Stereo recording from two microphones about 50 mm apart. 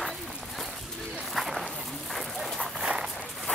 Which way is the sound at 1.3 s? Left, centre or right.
Centre.